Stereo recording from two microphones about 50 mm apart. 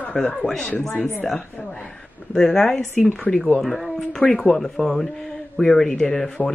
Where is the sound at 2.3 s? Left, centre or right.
Centre.